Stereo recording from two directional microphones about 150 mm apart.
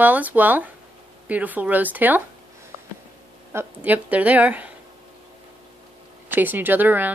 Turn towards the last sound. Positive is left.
turn(degrees=-10)  # may be behind; listen again after turning